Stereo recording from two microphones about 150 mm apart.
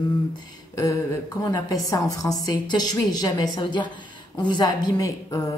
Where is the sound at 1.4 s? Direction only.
25° left (ahead or behind).